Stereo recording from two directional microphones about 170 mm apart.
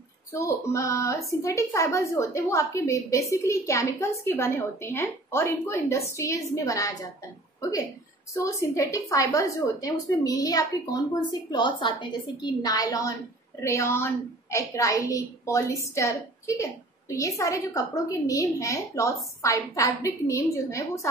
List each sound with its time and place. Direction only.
0.3 s a woman's voice: 15° left (ahead or behind)
8.4 s a woman's voice: 20° left (ahead or behind)